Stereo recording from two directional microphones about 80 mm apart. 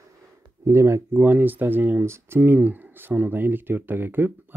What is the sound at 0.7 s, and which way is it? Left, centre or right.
Speech, right.